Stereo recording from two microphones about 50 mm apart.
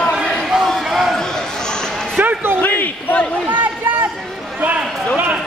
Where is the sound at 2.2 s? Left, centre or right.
Right.